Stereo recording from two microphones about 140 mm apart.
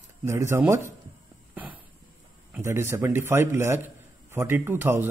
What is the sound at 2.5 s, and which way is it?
A man's voice, 15° right (ahead or behind).